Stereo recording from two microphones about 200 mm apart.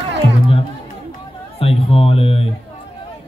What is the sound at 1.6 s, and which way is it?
Speech, 30° left (ahead or behind).